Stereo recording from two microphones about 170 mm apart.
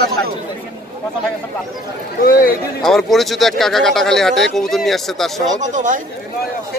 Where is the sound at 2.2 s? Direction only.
55° left (ahead or behind).